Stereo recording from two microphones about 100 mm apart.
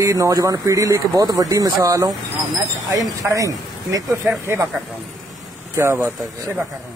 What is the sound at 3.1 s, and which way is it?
Speech, 35° right (ahead or behind).